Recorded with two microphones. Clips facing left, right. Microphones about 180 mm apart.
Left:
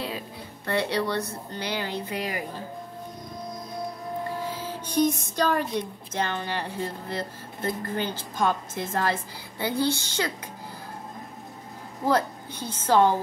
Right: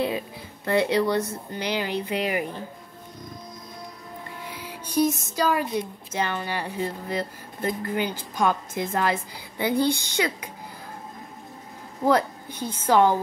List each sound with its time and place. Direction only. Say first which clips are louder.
0.7 s speech: right 5 dB; 15° right (ahead or behind)
4.5 s music: left 5 dB; 15° right (ahead or behind)
4.9 s speech: right 1 dB; 5° right (ahead or behind)
12.1 s speech: right 2 dB; 15° right (ahead or behind)